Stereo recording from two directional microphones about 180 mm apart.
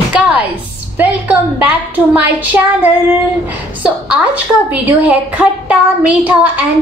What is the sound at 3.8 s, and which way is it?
A woman's voice, 5° right (ahead or behind).